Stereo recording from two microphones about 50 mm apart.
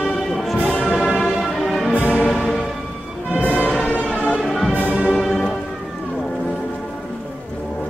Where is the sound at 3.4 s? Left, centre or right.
Left.